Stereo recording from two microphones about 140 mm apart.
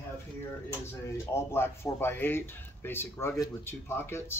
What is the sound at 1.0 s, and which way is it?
Speech, 20° left (ahead or behind).